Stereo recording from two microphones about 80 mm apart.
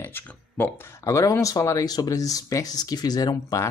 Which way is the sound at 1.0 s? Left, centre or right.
Left.